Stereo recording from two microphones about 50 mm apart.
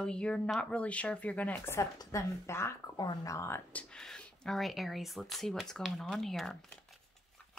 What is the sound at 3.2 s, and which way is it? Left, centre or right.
Speech, left.